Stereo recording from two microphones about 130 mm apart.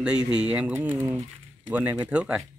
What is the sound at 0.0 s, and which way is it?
Speech, 10° right (ahead or behind).